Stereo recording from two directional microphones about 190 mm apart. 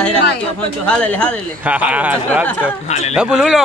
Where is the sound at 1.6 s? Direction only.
5° right (ahead or behind).